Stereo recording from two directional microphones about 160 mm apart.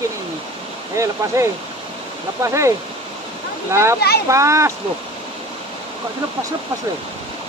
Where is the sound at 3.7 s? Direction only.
15° right (ahead or behind).